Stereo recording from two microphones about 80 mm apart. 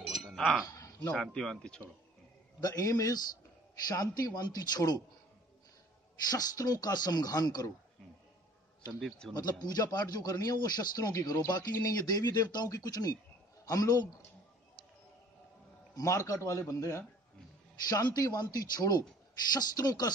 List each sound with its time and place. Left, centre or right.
0.0 s chink: centre
0.7 s a sound: left
1.1 s speech: centre
2.6 s a man's voice: left
6.3 s speech: left
9.3 s a man's voice: left
16.0 s a man's voice: left
17.8 s a man's voice: left